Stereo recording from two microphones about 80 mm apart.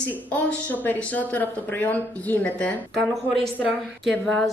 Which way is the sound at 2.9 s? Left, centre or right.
Centre.